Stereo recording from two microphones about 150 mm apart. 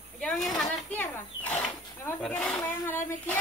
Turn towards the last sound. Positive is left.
turn(degrees=15)  # may be behind; listen again after turning